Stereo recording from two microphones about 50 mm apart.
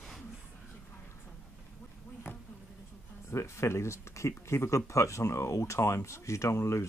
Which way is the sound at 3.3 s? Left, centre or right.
Left.